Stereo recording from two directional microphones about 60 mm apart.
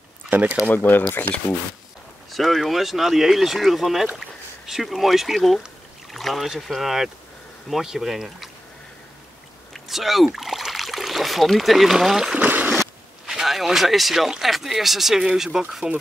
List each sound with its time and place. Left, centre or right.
0.3 s speech: right
0.7 s speech: left
2.3 s speech: centre
9.8 s speech: centre
12.4 s a sound: right
13.3 s speech: centre